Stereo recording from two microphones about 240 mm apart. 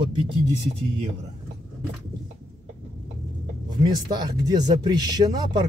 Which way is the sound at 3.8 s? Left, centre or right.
Centre.